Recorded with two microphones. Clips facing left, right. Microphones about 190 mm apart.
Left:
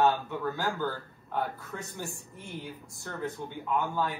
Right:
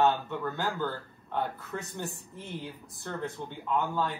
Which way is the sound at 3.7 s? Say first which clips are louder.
Even; 15° left (ahead or behind).